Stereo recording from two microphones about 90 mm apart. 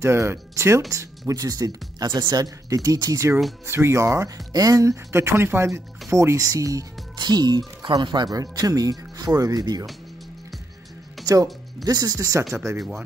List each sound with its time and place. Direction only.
0.0 s speech: 30° right (ahead or behind)
3.6 s speech: 30° right (ahead or behind)
4.5 s speech: 45° right (ahead or behind)
5.1 s speech: 30° right (ahead or behind)
7.2 s speech: 50° right (ahead or behind)
8.3 s speech: 40° right (ahead or behind)
11.3 s speech: 45° right (ahead or behind)